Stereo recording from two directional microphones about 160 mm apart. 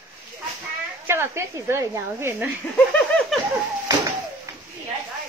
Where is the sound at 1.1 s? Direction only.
15° right (ahead or behind).